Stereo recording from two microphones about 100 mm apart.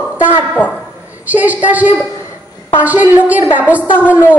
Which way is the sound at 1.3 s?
15° right (ahead or behind).